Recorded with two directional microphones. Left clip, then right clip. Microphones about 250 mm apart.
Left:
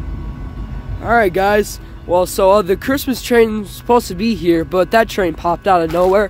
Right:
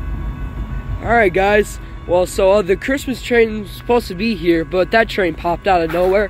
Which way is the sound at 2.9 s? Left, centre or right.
Left.